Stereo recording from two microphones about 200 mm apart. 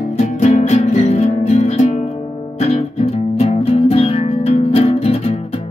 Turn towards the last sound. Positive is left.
turn(degrees=30)  # may be behind; listen again after turning